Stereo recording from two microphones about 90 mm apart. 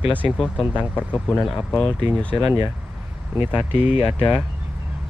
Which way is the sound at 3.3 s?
20° right (ahead or behind).